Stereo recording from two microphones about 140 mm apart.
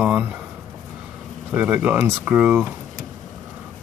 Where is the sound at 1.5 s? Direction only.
5° right (ahead or behind).